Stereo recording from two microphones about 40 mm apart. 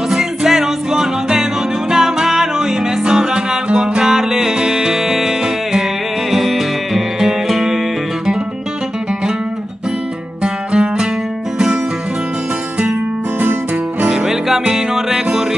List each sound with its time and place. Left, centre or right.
0.1 s music: centre
10.4 s music: right
14.0 s music: centre